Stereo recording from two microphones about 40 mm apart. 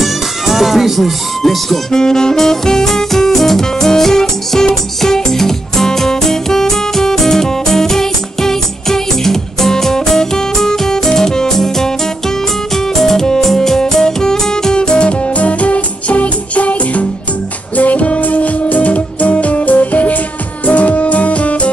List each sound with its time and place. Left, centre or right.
0.0 s music: centre
1.9 s music: centre; by 21.6 s left